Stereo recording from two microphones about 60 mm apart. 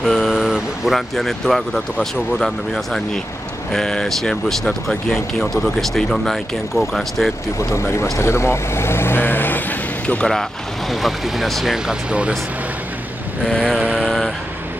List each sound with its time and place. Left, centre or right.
0.0 s a sound: centre
0.5 s speech: centre
7.5 s speech: left
10.0 s speech: centre
10.9 s speech: centre
11.7 s speech: centre
13.5 s vehicle: centre